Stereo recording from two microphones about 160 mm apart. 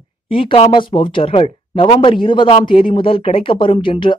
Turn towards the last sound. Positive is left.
turn(degrees=30)  # may be behind; listen again after turning